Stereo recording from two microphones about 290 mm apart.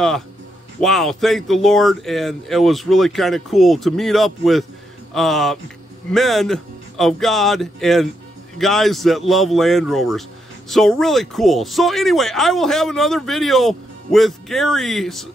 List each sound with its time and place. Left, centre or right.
0.7 s speech: centre